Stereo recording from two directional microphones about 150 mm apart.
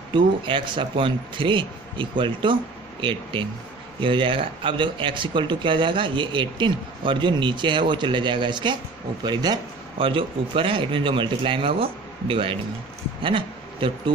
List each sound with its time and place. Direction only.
0.1 s speech: 35° right (ahead or behind)